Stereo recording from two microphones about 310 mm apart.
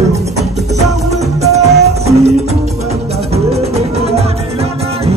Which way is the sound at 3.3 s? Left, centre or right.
Centre.